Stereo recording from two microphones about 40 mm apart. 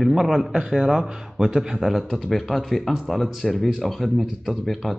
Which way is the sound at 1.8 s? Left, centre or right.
Centre.